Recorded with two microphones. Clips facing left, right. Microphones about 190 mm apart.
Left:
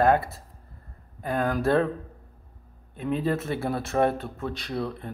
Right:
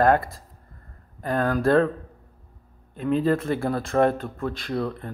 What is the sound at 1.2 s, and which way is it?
Speech, 15° left (ahead or behind).